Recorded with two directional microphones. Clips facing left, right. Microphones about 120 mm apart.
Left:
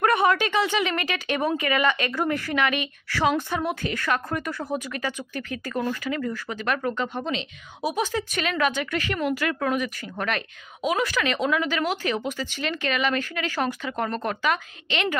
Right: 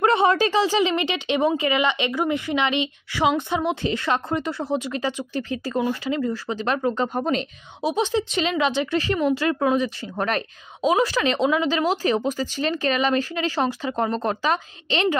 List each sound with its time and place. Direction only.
0.0 s a woman's voice: 30° right (ahead or behind)
7.0 s speech: 45° right (ahead or behind)
7.8 s a woman's voice: 25° right (ahead or behind)